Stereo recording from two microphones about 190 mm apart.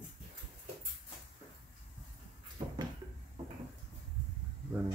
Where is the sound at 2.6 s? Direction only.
25° right (ahead or behind).